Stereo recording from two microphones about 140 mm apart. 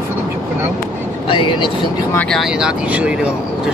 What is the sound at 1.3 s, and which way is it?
Speech, 40° left (ahead or behind).